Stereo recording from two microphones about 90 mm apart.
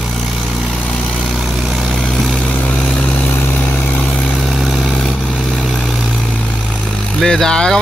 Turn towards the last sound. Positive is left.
turn(degrees=5)  # may be behind; listen again after turning